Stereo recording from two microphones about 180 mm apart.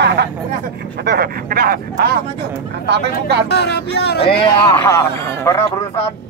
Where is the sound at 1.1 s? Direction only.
55° right (ahead or behind).